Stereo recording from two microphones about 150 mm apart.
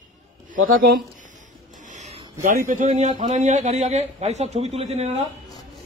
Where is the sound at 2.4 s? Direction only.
65° right (ahead or behind).